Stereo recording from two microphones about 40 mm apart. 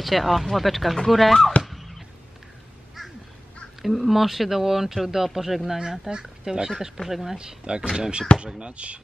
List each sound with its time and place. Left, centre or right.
0.0 s speech: centre
1.7 s a sound: centre
3.0 s quack: centre
3.8 s speech: centre
5.8 s speech: centre
7.0 s speech: centre
7.3 s speech: right